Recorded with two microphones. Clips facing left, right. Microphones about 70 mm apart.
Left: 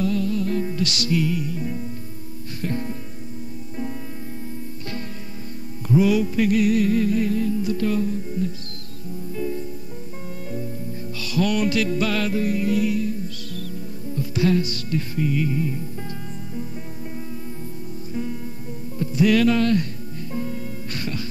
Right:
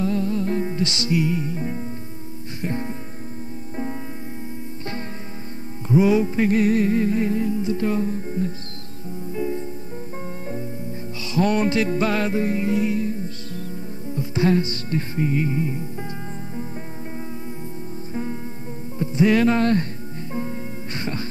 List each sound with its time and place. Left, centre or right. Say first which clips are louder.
0.0 s music: even; right
5.9 s music: right 1 dB; right
11.1 s music: right 2 dB; right
18.9 s music: even; right